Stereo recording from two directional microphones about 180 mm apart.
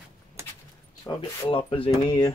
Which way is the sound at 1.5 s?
30° left (ahead or behind).